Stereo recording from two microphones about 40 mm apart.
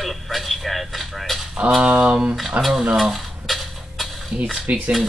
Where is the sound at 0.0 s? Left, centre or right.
Centre.